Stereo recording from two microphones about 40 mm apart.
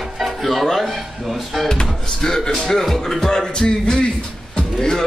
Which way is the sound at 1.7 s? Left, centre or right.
Centre.